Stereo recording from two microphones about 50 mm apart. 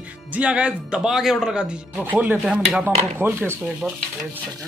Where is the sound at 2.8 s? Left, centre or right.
Right.